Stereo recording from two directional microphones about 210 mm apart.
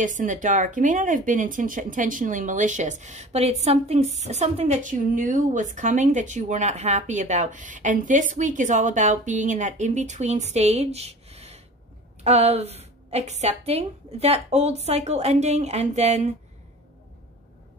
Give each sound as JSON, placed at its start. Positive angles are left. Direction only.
{"t": 0.0, "sound": "speech", "side_deg": -35}